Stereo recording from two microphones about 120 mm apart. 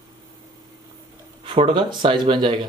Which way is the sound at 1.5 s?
45° right (ahead or behind).